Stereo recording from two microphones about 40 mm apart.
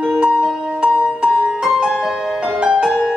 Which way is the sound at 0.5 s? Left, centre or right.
Centre.